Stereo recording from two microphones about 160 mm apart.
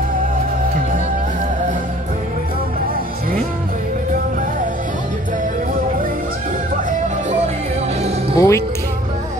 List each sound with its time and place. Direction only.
8.4 s speech: 20° left (ahead or behind)